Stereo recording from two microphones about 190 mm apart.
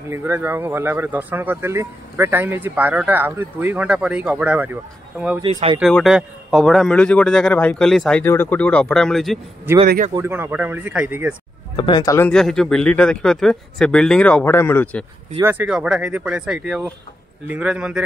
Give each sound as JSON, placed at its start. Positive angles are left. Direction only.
{"t": 0.1, "sound": "speech", "side_deg": -10}
{"t": 5.4, "sound": "speech", "side_deg": -30}
{"t": 5.8, "sound": "a man's voice", "side_deg": 0}
{"t": 9.8, "sound": "speech", "side_deg": -40}
{"t": 10.1, "sound": "speech", "side_deg": -15}
{"t": 11.7, "sound": "speech", "side_deg": 25}
{"t": 12.3, "sound": "a man's voice", "side_deg": 0}
{"t": 15.3, "sound": "a man's voice", "side_deg": -10}